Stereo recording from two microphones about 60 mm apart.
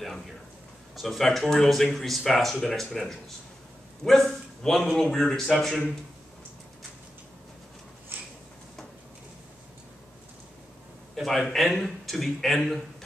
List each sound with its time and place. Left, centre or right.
0.9 s a man's voice: centre
11.1 s a man's voice: centre